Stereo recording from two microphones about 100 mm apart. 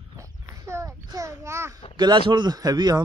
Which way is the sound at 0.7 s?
30° right (ahead or behind).